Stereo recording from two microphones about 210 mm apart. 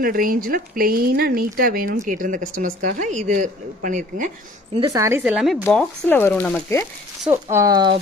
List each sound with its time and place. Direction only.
0.0 s speech: 45° right (ahead or behind)
4.7 s speech: 20° right (ahead or behind); by 6.9 s 10° left (ahead or behind)
7.5 s speech: 20° right (ahead or behind)